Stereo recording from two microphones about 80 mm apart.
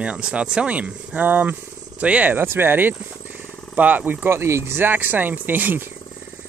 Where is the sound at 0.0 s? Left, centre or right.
Centre.